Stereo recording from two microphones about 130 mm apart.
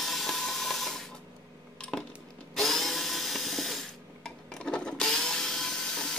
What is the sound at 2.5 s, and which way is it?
Tools, centre (ahead or behind).